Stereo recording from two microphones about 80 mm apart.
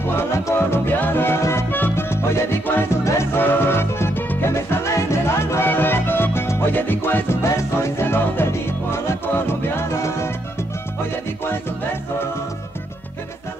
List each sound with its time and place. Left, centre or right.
0.0 s music: left